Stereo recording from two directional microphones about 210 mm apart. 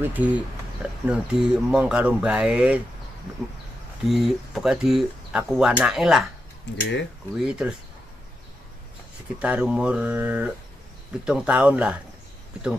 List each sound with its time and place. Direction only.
0.0 s speech: 5° right (ahead or behind)
4.0 s speech: centre (ahead or behind)
6.7 s speech: 60° left (ahead or behind)
7.3 s speech: 5° right (ahead or behind)
9.4 s speech: 5° right (ahead or behind)